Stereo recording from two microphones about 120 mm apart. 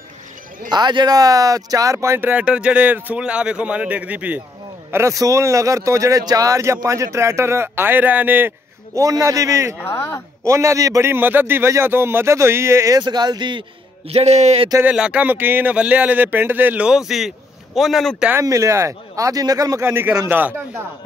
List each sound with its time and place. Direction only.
0.7 s speech: 40° right (ahead or behind); by 4.4 s 10° right (ahead or behind)
4.9 s a man's voice: 25° right (ahead or behind)
8.9 s a man's voice: 30° right (ahead or behind)
9.8 s speech: 20° left (ahead or behind)
10.4 s a man's voice: 25° right (ahead or behind); by 14.7 s 60° right (ahead or behind)
14.8 s speech: 10° right (ahead or behind)
18.4 s a man's voice: 25° right (ahead or behind)
19.8 s speech: 20° right (ahead or behind)